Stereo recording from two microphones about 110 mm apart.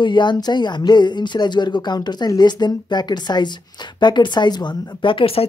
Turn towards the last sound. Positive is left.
turn(degrees=60)  # may be behind; listen again after turning